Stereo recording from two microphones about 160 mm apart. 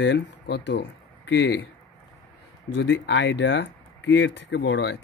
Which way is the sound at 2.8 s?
90° left.